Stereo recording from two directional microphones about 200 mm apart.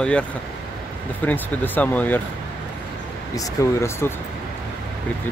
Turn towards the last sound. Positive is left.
turn(degrees=15)  # may be behind; listen again after turning